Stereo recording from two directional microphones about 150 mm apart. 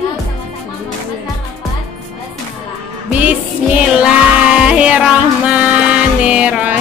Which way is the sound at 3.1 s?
10° right (ahead or behind).